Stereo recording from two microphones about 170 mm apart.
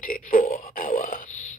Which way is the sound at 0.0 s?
55° left (ahead or behind).